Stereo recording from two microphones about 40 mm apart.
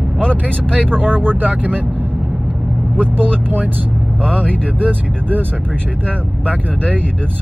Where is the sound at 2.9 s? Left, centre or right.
Right.